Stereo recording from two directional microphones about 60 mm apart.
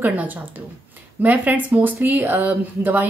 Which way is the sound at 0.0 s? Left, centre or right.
Right.